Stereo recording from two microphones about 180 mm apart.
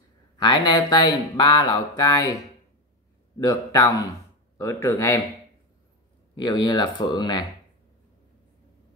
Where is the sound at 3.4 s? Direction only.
20° left (ahead or behind).